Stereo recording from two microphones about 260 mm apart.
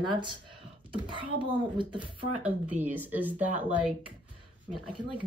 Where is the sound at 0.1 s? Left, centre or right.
Centre.